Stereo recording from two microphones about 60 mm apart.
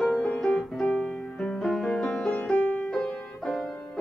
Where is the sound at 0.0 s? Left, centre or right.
Centre.